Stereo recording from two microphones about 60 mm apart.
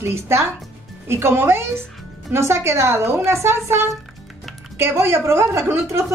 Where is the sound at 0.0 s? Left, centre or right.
Right.